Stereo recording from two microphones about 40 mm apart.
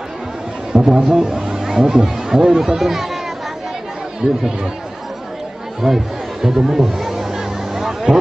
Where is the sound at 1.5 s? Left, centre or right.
Centre.